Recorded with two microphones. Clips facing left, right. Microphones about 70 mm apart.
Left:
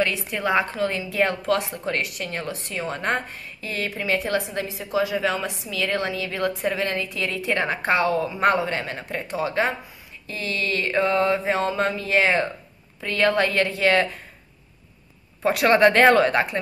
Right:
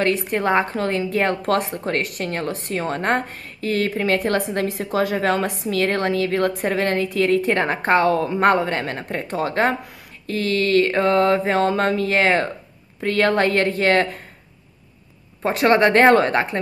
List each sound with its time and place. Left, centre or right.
0.0 s a woman's voice: right
15.4 s speech: right